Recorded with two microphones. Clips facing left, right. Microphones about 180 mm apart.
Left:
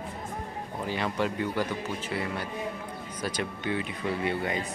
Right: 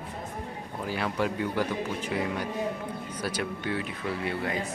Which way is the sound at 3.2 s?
10° right (ahead or behind).